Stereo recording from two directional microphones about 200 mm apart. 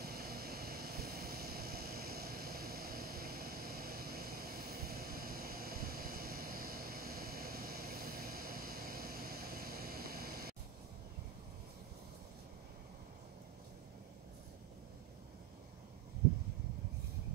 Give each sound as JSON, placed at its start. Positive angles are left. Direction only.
{"t": 0.0, "sound": "vehicle", "side_deg": -50}